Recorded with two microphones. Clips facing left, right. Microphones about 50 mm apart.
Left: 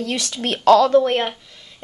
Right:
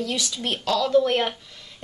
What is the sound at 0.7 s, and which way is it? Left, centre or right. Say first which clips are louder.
Speech: left 13 dB; left.